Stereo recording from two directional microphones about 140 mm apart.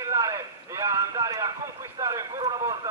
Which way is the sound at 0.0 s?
25° right (ahead or behind).